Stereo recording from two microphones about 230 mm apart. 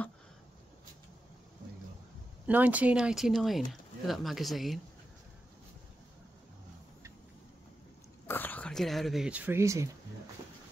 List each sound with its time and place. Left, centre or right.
2.4 s speech: centre
8.3 s speech: centre